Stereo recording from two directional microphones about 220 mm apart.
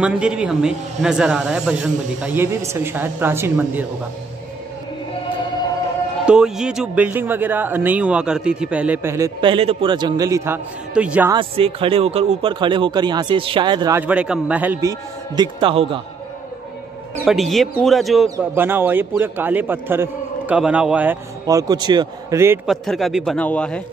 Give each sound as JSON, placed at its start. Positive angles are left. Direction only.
{"t": 0.0, "sound": "a man's voice", "side_deg": -5}
{"t": 6.2, "sound": "speech", "side_deg": -5}
{"t": 11.3, "sound": "a man's voice", "side_deg": -25}
{"t": 17.2, "sound": "a man's voice", "side_deg": 0}
{"t": 18.3, "sound": "speech", "side_deg": -10}
{"t": 22.7, "sound": "a man's voice", "side_deg": 0}